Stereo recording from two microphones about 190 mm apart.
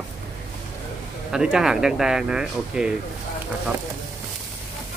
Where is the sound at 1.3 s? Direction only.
5° right (ahead or behind).